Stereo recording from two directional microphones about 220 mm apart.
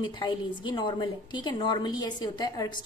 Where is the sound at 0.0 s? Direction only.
20° left (ahead or behind).